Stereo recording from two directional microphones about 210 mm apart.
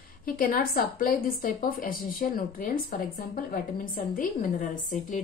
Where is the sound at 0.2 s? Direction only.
40° left (ahead or behind).